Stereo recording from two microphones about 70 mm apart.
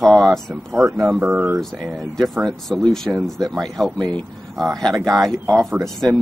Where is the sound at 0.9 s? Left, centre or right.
Right.